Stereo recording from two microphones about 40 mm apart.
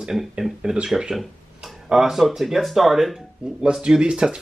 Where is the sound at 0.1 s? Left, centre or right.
Centre.